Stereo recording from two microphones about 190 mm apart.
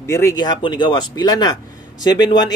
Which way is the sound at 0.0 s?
15° left (ahead or behind).